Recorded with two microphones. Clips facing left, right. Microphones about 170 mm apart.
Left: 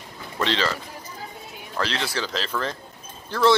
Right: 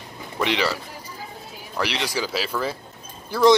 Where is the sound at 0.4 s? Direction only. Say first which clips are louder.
Right 1 dB; 15° right (ahead or behind).